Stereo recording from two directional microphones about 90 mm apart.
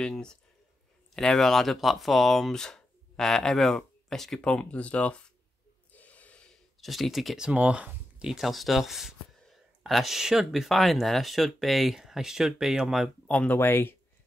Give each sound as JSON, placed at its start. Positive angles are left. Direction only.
{"t": 0.0, "sound": "speech", "side_deg": 10}
{"t": 13.3, "sound": "speech", "side_deg": 20}